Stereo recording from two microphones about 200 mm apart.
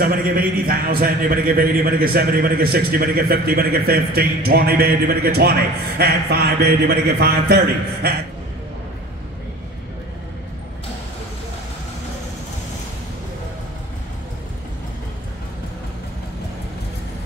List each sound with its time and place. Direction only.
0.0 s a man's voice: 45° right (ahead or behind)